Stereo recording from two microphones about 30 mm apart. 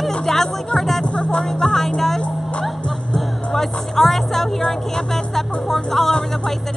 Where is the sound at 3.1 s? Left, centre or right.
Centre.